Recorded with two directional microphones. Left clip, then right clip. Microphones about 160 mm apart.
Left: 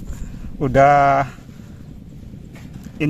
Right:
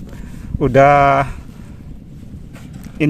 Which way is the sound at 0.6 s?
25° right (ahead or behind).